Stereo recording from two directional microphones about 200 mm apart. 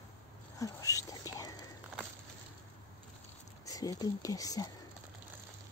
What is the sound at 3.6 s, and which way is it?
Speech, 20° left (ahead or behind).